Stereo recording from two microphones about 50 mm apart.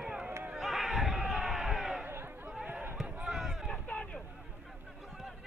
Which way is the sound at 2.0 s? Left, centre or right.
Right.